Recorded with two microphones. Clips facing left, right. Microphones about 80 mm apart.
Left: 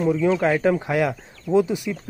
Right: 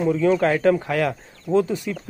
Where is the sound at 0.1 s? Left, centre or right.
Centre.